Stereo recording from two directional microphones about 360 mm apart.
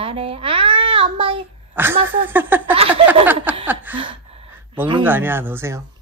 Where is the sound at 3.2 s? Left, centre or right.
Centre.